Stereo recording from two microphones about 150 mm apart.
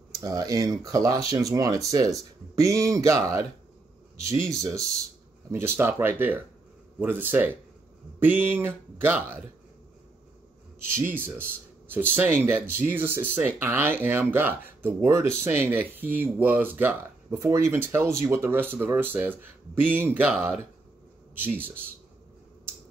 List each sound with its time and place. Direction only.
0.2 s speech: 25° right (ahead or behind)
10.8 s speech: 15° right (ahead or behind)